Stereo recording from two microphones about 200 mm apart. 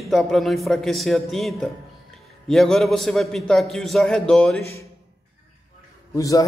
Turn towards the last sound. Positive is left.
turn(degrees=15)  # may be behind; listen again after turning